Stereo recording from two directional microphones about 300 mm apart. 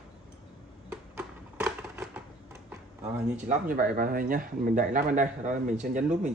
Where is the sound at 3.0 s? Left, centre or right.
Right.